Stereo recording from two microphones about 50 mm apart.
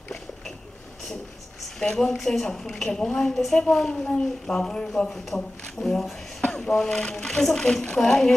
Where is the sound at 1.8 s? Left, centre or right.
Centre.